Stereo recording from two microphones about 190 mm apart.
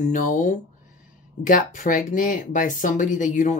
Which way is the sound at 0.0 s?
40° left (ahead or behind).